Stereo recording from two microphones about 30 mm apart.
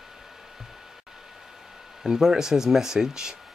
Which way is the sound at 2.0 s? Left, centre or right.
Centre.